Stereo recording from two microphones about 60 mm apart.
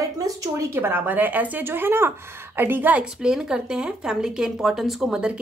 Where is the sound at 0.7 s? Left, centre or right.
Right.